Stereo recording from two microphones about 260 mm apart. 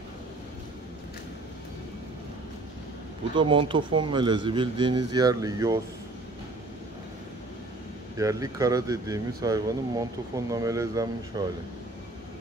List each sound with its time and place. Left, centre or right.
3.3 s speech: centre
8.2 s speech: centre